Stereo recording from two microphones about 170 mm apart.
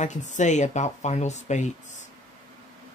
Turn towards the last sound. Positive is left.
turn(degrees=45)  # may be behind; listen again after turning